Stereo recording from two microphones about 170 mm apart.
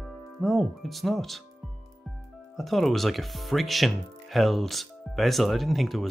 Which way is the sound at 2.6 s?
Centre (ahead or behind).